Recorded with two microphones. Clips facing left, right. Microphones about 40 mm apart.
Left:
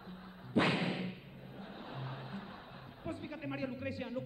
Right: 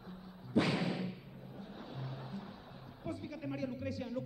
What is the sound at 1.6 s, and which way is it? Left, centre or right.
Speech, left.